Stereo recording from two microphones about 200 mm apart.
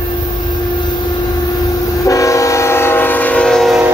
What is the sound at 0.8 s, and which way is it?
Train, 20° left (ahead or behind).